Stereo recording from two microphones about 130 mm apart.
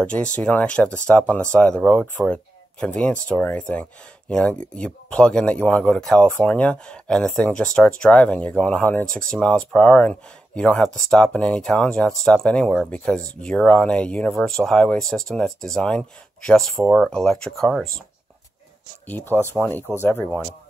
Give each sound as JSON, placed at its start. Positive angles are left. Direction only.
{"t": 0.0, "sound": "speech", "side_deg": 10}
{"t": 19.0, "sound": "speech", "side_deg": 15}